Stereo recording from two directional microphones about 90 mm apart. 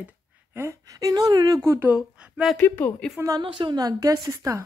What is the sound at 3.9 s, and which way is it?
Speech, 40° right (ahead or behind).